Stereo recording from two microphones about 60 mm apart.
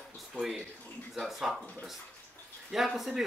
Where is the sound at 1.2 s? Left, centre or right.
Centre.